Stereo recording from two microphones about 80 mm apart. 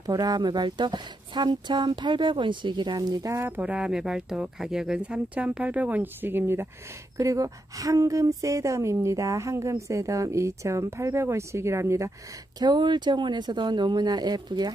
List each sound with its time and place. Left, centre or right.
0.0 s speech: right
3.0 s speech: right
3.3 s speech: right
3.6 s speech: centre; by 6.7 s right
7.2 s a woman's voice: right
12.5 s speech: right